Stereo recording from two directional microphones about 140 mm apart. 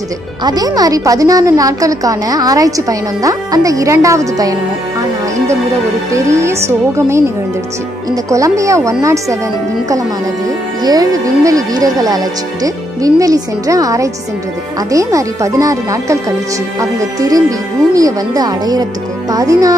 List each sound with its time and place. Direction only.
0.4 s a woman's voice: 30° right (ahead or behind)
6.1 s a woman's voice: 20° right (ahead or behind)
10.8 s a woman's voice: 25° right (ahead or behind)